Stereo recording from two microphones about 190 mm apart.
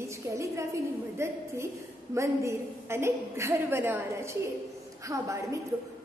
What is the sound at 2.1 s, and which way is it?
A woman's voice, 15° right (ahead or behind).